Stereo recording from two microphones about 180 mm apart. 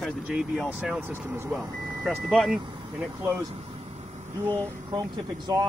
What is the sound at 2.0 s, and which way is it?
Speech, centre (ahead or behind).